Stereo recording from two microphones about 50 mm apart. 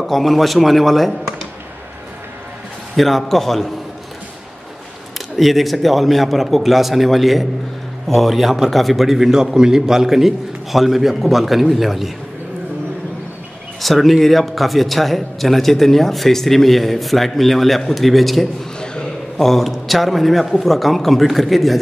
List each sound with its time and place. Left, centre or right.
0.0 s speech: centre
3.0 s speech: centre
5.3 s speech: centre
13.7 s speech: centre
18.8 s a sound: centre
19.4 s speech: centre